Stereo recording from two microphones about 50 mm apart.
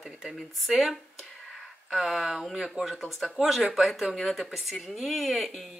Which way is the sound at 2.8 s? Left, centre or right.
Right.